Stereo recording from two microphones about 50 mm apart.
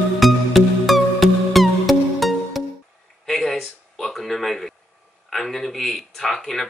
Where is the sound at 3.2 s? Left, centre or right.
Centre.